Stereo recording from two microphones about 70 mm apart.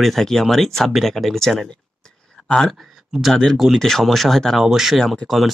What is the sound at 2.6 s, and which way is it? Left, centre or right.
Speech, centre.